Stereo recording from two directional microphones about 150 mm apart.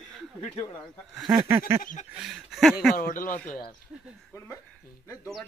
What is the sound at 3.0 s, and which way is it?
Speech, 65° left (ahead or behind).